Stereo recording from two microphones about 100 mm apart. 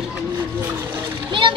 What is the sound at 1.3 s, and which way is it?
Speech, 55° right (ahead or behind).